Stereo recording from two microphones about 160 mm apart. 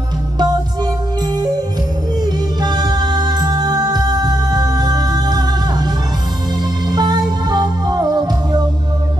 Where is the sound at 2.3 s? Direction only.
25° right (ahead or behind).